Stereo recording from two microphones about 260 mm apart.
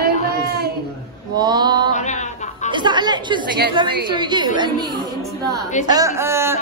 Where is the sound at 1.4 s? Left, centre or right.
Centre.